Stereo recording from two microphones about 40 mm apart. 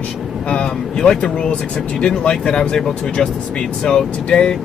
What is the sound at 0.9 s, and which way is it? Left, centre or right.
Speech, centre.